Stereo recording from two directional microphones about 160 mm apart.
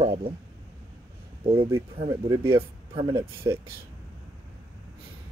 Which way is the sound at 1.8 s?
30° right (ahead or behind).